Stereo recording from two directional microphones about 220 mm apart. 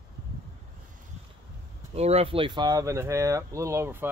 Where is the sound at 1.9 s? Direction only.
30° right (ahead or behind); by 4.1 s 10° right (ahead or behind).